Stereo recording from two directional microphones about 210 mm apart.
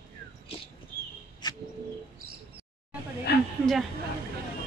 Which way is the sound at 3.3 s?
50° left (ahead or behind).